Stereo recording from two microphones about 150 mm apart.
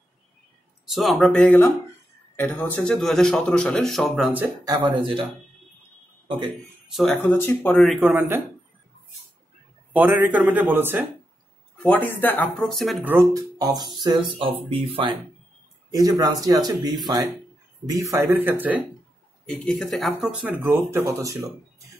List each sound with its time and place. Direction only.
0.8 s speech: centre (ahead or behind)
4.6 s speech: 30° right (ahead or behind)
6.9 s speech: centre (ahead or behind)
8.1 s speech: 15° right (ahead or behind)
9.9 s speech: 10° right (ahead or behind)
11.8 s speech: 10° left (ahead or behind)
13.0 s speech: 15° right (ahead or behind)
14.3 s speech: 40° right (ahead or behind)
15.9 s speech: 25° right (ahead or behind)
19.4 s speech: 5° left (ahead or behind); by 21.8 s 20° right (ahead or behind)